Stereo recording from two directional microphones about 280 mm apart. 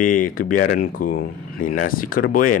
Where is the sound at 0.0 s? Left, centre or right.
Left.